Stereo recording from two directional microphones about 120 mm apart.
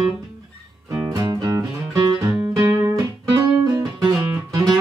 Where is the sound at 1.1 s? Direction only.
35° right (ahead or behind).